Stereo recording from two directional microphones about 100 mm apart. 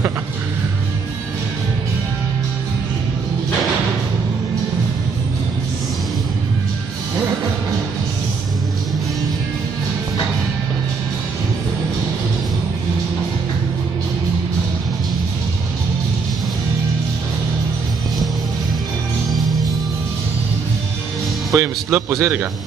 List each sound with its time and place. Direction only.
21.5 s speech: 25° right (ahead or behind)